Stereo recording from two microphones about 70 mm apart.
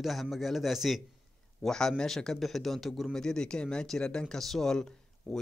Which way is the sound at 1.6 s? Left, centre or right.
Centre.